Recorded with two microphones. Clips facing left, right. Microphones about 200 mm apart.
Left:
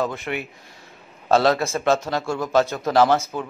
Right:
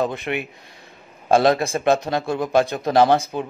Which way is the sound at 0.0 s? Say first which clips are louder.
Right 2 dB; 20° right (ahead or behind).